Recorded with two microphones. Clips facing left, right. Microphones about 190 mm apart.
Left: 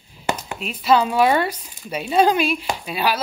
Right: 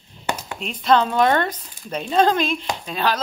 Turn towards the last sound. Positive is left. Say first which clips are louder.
# even
turn(degrees=10)  # may be behind; listen again after turning